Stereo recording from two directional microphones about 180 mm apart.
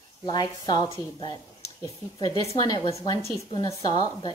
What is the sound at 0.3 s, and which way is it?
A woman's voice, 25° left (ahead or behind).